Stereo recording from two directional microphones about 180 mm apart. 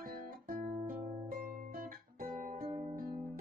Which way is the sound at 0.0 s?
50° right (ahead or behind).